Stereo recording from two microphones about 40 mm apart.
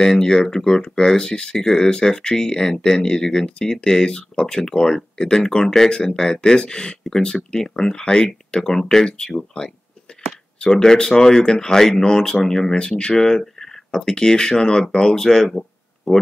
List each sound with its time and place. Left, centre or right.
0.0 s speech: centre